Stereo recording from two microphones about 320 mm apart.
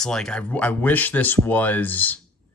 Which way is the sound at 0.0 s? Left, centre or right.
Centre.